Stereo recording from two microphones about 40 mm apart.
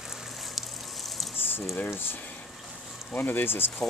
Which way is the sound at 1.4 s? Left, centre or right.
Left.